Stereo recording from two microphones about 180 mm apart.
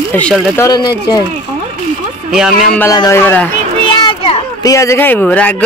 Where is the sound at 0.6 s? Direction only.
20° left (ahead or behind).